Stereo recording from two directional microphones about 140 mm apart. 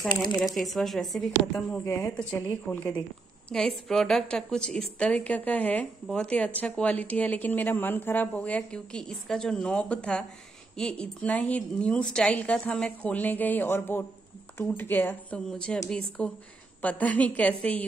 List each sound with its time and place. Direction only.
0.6 s speech: centre (ahead or behind)
1.5 s speech: 20° left (ahead or behind)